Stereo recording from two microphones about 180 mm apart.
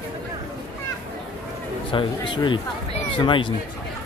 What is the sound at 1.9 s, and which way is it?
Speech, 30° left (ahead or behind).